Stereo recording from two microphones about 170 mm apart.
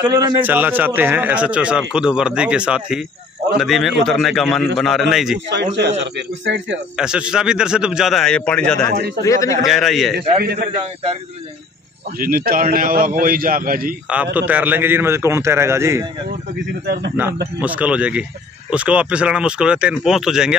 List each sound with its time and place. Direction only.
0.2 s a man's voice: 10° right (ahead or behind)
5.5 s a man's voice: 85° right
7.0 s speech: 5° right (ahead or behind)
9.2 s speech: 20° left (ahead or behind)
9.7 s speech: centre (ahead or behind)
10.4 s speech: 70° right (ahead or behind)
12.2 s a man's voice: 55° right (ahead or behind)
14.0 s a man's voice: 10° right (ahead or behind)
16.8 s speech: 75° right (ahead or behind)
17.6 s a man's voice: 10° right (ahead or behind)